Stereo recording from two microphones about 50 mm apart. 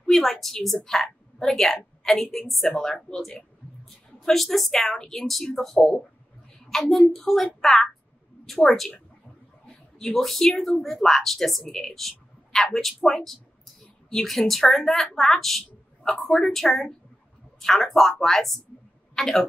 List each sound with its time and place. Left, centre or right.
0.1 s a woman's voice: centre
2.7 s a woman's voice: centre